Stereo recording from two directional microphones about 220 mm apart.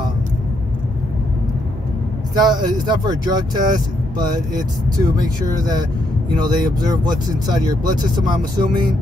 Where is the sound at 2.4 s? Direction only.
20° right (ahead or behind).